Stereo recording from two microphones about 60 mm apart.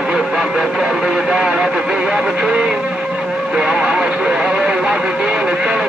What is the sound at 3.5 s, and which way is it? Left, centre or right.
Music, centre.